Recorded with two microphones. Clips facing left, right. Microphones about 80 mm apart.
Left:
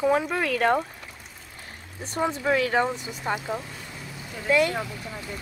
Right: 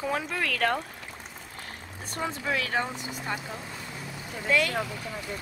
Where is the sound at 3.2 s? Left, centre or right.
Left.